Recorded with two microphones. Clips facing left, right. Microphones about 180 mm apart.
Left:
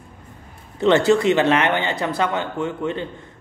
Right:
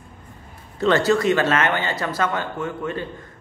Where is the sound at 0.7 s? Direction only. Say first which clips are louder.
Left 3 dB; 20° left (ahead or behind).